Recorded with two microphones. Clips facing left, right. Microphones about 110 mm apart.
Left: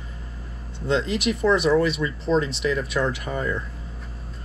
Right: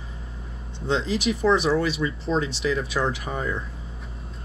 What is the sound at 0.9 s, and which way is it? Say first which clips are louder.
Speech: left 1 dB; centre (ahead or behind).